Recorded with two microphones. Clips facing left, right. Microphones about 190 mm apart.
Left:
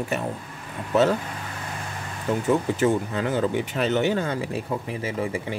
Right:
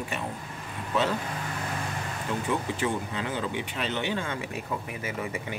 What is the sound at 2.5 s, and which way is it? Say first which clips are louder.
Speech: left 8 dB; 45° left (ahead or behind).